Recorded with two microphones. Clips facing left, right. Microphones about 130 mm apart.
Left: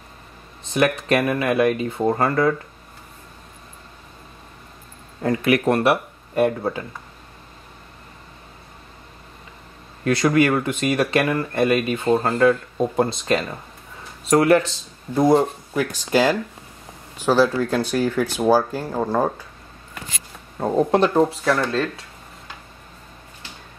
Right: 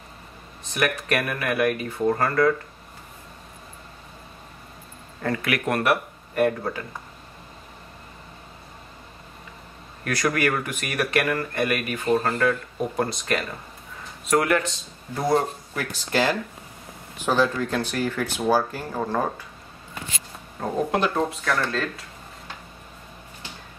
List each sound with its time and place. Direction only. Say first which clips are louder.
0.7 s speech: left 6 dB; 25° left (ahead or behind)
5.2 s speech: left 5 dB; 15° left (ahead or behind)
5.5 s speech: left 5 dB; 30° left (ahead or behind)
10.0 s speech: left 6 dB; 25° left (ahead or behind)
15.3 s speech: left 5 dB; 10° left (ahead or behind)
20.9 s speech: left 7 dB; 30° left (ahead or behind)
21.5 s speech: left 4 dB; centre (ahead or behind)